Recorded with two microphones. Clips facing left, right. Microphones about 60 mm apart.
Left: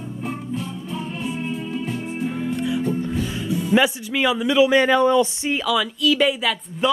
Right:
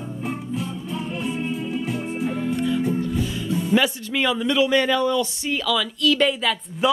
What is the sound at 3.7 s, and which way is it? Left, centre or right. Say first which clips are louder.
Speech: left 3 dB; centre.